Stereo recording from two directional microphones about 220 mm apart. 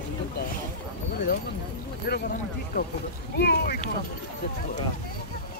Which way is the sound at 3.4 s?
50° left (ahead or behind).